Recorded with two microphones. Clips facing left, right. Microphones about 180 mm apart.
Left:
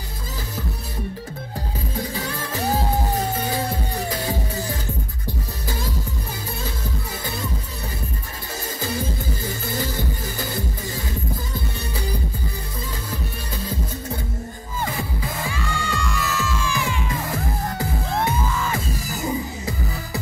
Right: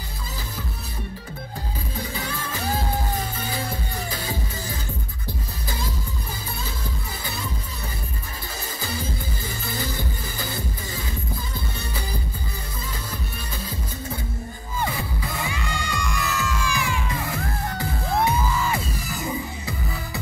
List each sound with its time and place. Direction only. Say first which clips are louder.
15.5 s music: left 2 dB; 15° right (ahead or behind)